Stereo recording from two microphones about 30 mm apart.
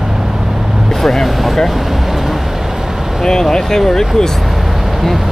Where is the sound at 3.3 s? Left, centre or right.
Centre.